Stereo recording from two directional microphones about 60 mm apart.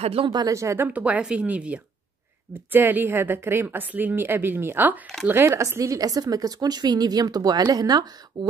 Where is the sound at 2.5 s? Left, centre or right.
Right.